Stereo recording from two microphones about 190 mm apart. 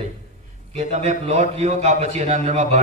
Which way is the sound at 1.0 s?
35° right (ahead or behind).